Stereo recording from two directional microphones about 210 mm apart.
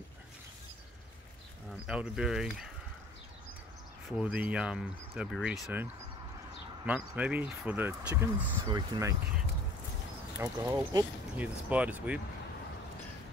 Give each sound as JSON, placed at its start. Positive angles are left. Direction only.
{"t": 1.9, "sound": "speech", "side_deg": -5}
{"t": 4.2, "sound": "speech", "side_deg": -5}
{"t": 6.9, "sound": "speech", "side_deg": -5}
{"t": 8.6, "sound": "speech", "side_deg": -20}
{"t": 10.4, "sound": "speech", "side_deg": -15}